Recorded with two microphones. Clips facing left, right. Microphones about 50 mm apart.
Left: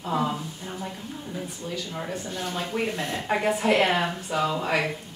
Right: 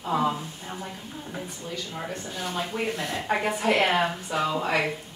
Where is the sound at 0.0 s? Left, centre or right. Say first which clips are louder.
Right 1 dB; centre.